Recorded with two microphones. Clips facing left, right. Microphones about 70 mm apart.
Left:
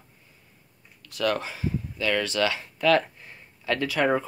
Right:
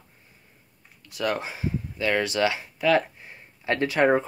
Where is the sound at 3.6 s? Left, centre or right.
Right.